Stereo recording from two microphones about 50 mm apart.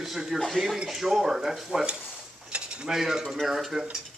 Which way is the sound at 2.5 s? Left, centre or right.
Right.